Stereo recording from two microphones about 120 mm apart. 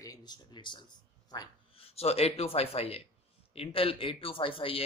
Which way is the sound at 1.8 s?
55° left (ahead or behind).